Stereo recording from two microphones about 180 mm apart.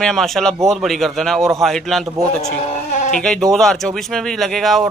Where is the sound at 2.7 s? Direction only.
40° left (ahead or behind).